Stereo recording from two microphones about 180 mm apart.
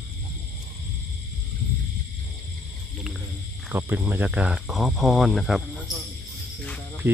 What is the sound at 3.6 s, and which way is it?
Speech, 10° right (ahead or behind).